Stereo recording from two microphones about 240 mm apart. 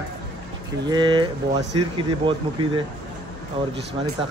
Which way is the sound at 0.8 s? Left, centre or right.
Centre.